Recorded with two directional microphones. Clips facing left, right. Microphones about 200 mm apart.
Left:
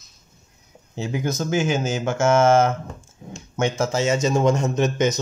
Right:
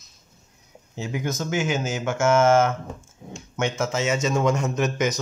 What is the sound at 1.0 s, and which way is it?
A man's voice, 35° left (ahead or behind).